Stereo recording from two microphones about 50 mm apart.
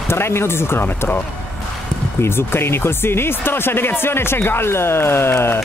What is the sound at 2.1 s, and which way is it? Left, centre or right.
Speech, left.